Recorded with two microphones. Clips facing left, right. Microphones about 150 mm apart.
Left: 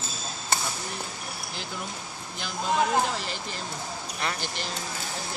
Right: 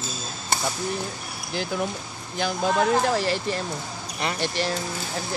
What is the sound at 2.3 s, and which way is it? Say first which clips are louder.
Speech: right 4 dB; 70° right (ahead or behind).